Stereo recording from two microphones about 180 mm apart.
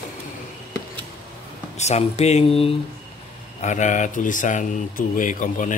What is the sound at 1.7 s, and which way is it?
Speech, 40° left (ahead or behind).